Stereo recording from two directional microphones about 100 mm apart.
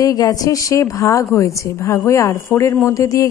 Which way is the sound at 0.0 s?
40° left (ahead or behind).